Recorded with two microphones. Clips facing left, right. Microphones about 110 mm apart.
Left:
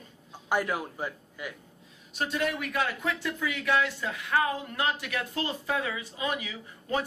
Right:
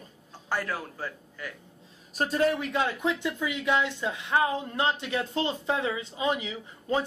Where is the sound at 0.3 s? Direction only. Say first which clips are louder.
Left 3 dB; 15° left (ahead or behind).